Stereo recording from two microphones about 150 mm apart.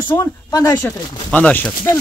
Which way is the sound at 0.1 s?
20° left (ahead or behind).